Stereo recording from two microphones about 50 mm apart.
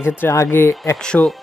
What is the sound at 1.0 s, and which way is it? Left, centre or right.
Speech, centre.